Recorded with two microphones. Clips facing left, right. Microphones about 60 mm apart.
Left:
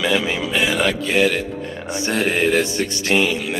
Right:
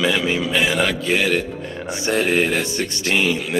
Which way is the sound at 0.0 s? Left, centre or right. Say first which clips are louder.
Even; centre.